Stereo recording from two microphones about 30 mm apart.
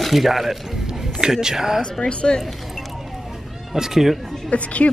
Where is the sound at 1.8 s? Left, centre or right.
Left.